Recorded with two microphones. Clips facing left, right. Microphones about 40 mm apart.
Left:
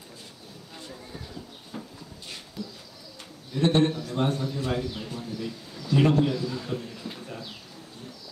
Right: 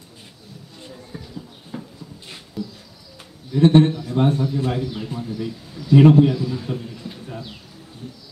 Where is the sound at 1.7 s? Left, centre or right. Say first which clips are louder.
Right 5 dB; centre.